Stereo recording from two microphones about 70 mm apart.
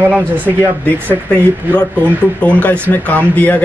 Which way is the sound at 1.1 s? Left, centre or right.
Centre.